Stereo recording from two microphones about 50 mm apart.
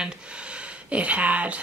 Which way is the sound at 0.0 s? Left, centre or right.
Right.